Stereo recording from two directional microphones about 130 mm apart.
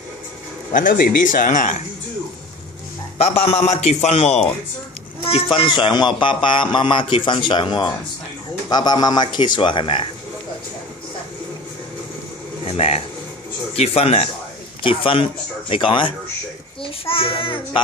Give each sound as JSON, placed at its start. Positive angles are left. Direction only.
{"t": 0.7, "sound": "speech", "side_deg": 90}
{"t": 3.2, "sound": "a man's voice", "side_deg": 55}
{"t": 12.6, "sound": "a man's voice", "side_deg": 50}